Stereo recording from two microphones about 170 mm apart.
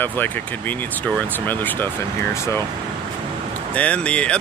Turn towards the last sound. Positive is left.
turn(degrees=5)  # may be behind; listen again after turning